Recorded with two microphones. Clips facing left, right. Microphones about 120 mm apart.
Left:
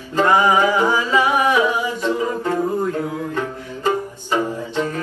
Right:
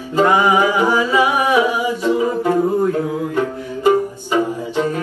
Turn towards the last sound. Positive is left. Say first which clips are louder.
# right 3 dB
turn(degrees=-15)  # may be behind; listen again after turning